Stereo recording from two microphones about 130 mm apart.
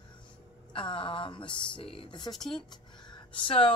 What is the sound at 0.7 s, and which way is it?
Speech, 40° left (ahead or behind).